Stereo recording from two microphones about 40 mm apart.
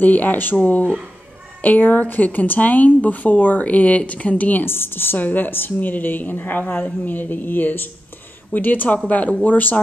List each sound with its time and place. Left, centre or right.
0.0 s a woman's voice: left
1.6 s a woman's voice: left
4.6 s a woman's voice: left
5.2 s a woman's voice: left